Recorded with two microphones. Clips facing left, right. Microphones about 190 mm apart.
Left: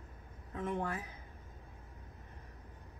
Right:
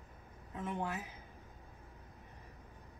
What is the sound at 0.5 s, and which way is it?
Speech, centre (ahead or behind).